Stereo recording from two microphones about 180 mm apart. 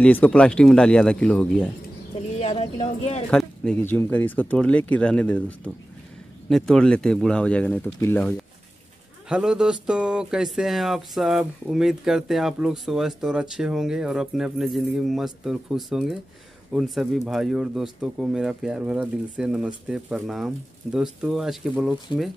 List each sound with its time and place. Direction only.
0.0 s speech: 5° left (ahead or behind)
2.3 s speech: 35° left (ahead or behind)
3.3 s speech: 5° left (ahead or behind)
9.3 s speech: 5° right (ahead or behind)